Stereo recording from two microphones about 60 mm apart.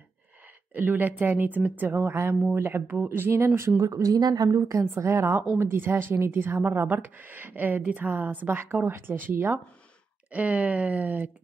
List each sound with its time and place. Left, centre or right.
0.7 s speech: right
3.3 s speech: right
3.8 s speech: right
4.5 s a woman's voice: right
4.9 s speech: right
10.3 s speech: right